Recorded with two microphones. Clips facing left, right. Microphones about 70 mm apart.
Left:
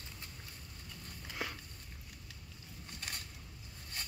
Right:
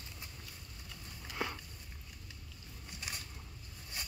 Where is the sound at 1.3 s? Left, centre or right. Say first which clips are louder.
Right 3 dB; centre.